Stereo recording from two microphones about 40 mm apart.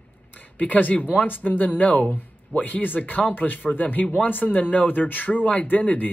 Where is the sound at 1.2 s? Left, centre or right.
Left.